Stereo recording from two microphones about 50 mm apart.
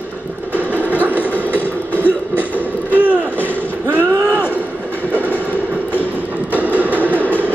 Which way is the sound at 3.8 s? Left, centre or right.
Right.